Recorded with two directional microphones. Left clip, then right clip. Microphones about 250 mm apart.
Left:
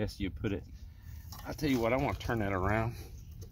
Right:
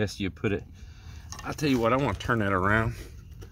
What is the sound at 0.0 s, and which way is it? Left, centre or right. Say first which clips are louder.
Speech: right 7 dB; right.